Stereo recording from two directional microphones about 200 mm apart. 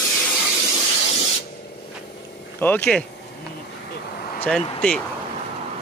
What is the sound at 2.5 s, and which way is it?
Speech, 10° left (ahead or behind).